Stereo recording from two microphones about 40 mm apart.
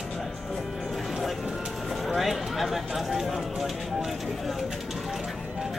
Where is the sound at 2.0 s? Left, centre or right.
Centre.